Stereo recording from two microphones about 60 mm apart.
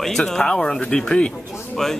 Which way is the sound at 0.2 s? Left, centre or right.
Centre.